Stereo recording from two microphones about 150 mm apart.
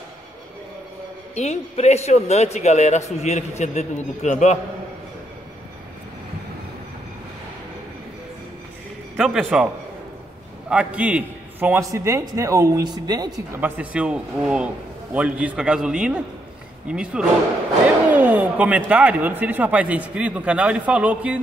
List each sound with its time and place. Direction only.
1.3 s a man's voice: 50° left (ahead or behind)
9.1 s speech: centre (ahead or behind)
10.7 s a man's voice: 10° right (ahead or behind)
11.9 s speech: 20° right (ahead or behind)
13.6 s speech: 10° right (ahead or behind)